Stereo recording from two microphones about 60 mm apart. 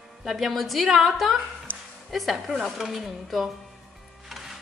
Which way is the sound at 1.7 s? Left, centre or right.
Left.